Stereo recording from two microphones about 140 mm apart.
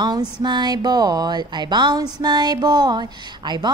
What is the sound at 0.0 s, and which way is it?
Speech, 30° right (ahead or behind).